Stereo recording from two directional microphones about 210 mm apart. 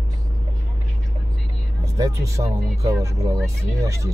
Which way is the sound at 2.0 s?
15° right (ahead or behind).